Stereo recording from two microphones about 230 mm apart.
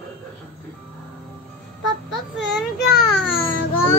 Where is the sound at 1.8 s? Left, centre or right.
Centre.